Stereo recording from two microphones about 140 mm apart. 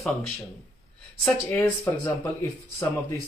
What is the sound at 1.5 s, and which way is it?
Speech, 15° left (ahead or behind).